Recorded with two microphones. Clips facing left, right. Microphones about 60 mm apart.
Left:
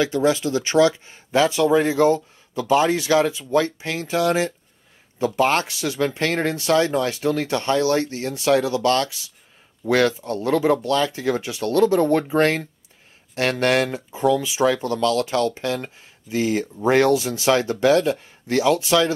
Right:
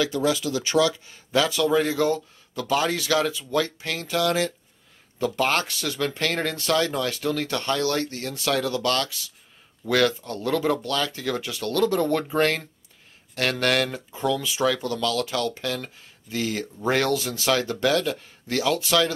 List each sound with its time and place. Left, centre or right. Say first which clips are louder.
0.0 s speech: left 4 dB; left